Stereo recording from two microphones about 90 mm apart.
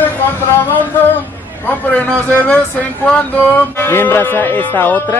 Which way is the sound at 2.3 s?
20° left (ahead or behind).